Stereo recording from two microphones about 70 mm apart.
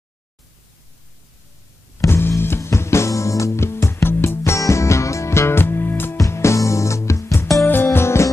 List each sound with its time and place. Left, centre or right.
2.0 s music: left
4.4 s music: left
6.1 s music: left